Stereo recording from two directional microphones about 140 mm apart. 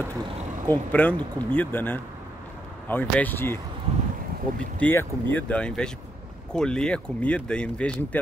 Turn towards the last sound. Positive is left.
turn(degrees=5)  # may be behind; listen again after turning